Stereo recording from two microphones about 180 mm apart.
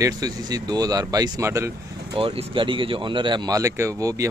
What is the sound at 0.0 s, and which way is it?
Speech, 20° right (ahead or behind).